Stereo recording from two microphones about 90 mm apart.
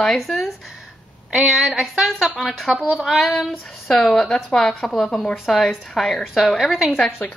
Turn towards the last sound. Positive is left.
turn(degrees=20)  # may be behind; listen again after turning